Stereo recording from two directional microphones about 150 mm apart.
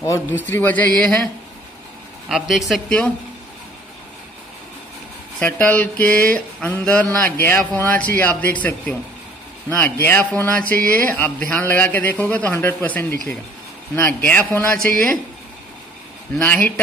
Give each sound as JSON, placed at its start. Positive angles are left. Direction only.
{"t": 0.0, "sound": "a man's voice", "side_deg": 20}
{"t": 5.4, "sound": "speech", "side_deg": 10}
{"t": 9.7, "sound": "speech", "side_deg": 15}
{"t": 16.3, "sound": "speech", "side_deg": 10}